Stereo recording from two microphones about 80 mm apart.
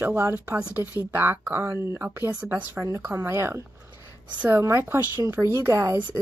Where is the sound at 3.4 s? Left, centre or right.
Right.